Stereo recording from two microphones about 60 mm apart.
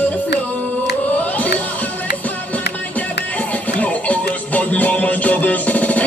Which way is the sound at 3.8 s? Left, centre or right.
Left.